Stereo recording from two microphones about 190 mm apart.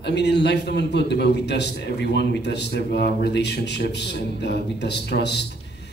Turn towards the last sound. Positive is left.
turn(degrees=60)  # may be behind; listen again after turning